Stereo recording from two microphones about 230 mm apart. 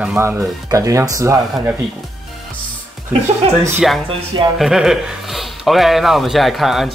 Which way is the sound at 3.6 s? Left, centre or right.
Centre.